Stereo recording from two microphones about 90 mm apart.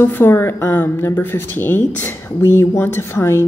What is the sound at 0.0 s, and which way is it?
Speech, 25° left (ahead or behind).